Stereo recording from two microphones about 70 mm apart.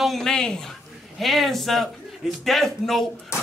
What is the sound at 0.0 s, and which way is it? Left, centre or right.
Speech, centre.